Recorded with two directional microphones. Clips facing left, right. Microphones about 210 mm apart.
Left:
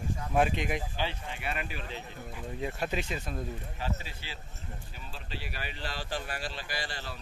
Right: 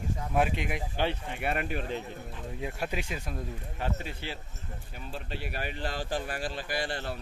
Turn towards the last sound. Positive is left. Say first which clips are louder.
# right 6 dB
turn(degrees=-55)  # may be behind; listen again after turning